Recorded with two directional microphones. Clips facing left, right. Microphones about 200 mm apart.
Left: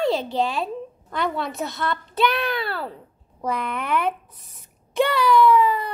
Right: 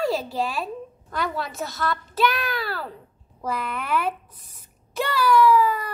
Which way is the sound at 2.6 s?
25° left (ahead or behind).